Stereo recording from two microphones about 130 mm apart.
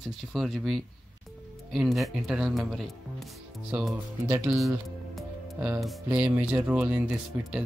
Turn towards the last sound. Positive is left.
turn(degrees=-15)  # may be behind; listen again after turning